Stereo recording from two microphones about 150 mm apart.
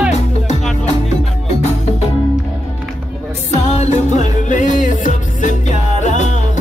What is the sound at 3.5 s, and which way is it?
Music, 50° left (ahead or behind).